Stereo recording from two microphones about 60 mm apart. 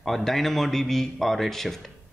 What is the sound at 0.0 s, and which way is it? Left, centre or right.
Speech, centre.